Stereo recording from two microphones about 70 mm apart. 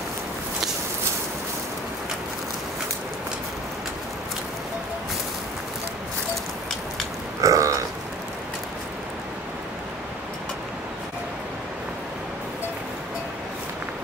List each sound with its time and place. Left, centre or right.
7.4 s burping: right